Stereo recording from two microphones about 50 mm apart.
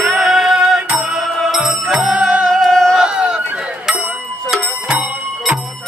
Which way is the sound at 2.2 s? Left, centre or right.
Centre.